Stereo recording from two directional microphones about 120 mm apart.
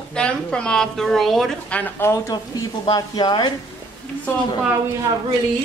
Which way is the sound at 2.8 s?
35° left (ahead or behind).